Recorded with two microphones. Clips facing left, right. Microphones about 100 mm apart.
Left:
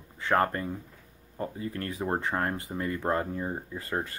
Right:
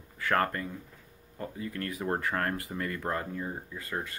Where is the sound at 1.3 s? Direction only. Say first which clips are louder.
Left 3 dB; 30° left (ahead or behind).